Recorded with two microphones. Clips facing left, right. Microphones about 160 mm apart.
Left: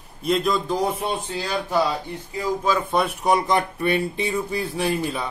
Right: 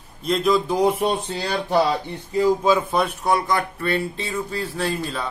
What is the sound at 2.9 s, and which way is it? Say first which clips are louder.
Speech: even; 5° left (ahead or behind).